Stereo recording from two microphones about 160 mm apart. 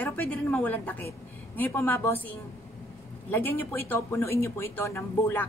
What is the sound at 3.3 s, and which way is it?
A woman's voice, 15° left (ahead or behind).